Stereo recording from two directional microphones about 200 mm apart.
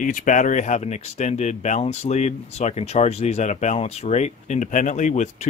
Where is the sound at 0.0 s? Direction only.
40° left (ahead or behind).